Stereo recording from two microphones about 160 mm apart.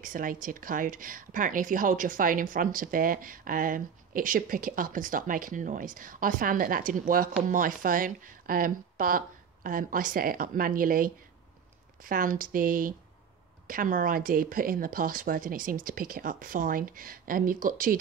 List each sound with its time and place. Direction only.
0.0 s speech: 60° right (ahead or behind)